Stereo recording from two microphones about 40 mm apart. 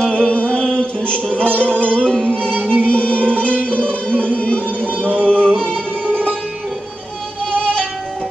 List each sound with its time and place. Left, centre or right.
0.1 s music: left
7.5 s music: left